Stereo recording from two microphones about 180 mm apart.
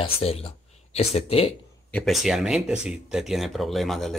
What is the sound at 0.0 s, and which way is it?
Speech, 35° left (ahead or behind).